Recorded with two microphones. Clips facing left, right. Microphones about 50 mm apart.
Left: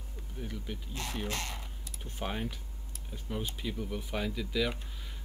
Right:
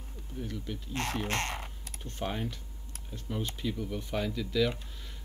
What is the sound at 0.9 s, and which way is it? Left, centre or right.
Speech, right.